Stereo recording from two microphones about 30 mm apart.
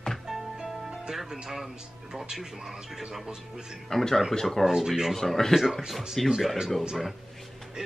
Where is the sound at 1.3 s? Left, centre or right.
Centre.